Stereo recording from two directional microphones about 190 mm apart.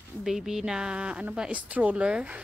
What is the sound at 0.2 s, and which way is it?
A woman's voice, centre (ahead or behind).